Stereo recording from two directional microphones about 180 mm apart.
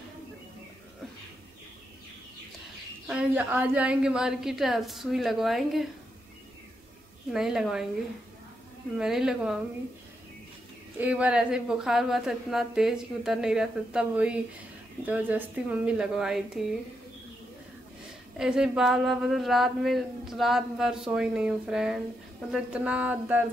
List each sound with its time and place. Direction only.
3.1 s speech: 10° right (ahead or behind)
7.3 s speech: centre (ahead or behind)
8.9 s speech: 5° right (ahead or behind)
11.0 s speech: 10° right (ahead or behind)
18.4 s speech: 5° right (ahead or behind)